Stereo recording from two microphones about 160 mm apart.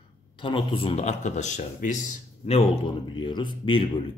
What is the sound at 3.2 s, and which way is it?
Speech, 30° left (ahead or behind).